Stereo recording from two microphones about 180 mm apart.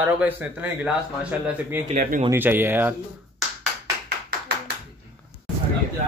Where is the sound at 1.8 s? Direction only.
45° right (ahead or behind).